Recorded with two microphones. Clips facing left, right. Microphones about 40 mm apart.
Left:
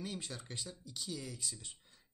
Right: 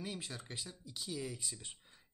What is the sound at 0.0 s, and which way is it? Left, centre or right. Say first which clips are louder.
Speech: even; centre.